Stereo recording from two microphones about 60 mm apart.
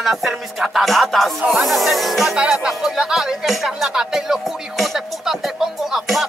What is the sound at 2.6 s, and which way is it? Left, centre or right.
Speech, centre.